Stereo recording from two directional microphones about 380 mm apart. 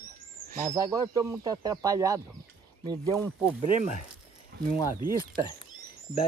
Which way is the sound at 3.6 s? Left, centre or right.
Centre.